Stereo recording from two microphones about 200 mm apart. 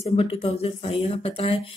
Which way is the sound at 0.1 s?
30° left (ahead or behind).